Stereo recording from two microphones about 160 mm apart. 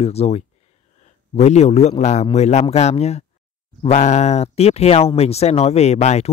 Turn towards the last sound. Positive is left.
turn(degrees=45)  # may be behind; listen again after turning